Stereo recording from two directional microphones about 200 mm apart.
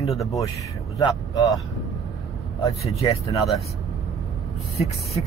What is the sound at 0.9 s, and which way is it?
Speech, 15° left (ahead or behind).